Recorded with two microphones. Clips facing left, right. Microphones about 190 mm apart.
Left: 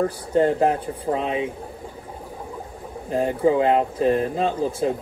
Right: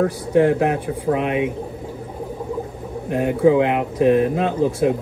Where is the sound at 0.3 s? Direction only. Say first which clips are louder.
Right 2 dB; 75° right (ahead or behind).